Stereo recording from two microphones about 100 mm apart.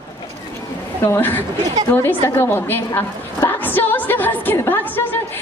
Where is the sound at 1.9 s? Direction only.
25° left (ahead or behind).